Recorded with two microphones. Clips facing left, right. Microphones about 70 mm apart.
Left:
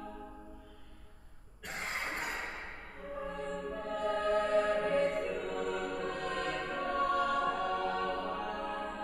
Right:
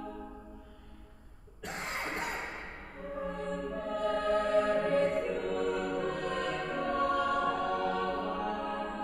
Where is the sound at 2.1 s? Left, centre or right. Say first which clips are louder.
Right 2 dB; right.